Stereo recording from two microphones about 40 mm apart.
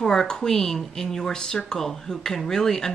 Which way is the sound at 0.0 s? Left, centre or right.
Centre.